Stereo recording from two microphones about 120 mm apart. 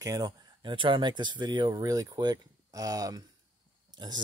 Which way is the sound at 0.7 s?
45° right (ahead or behind).